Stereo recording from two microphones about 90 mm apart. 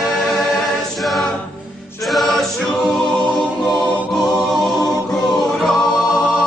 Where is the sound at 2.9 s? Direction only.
15° left (ahead or behind).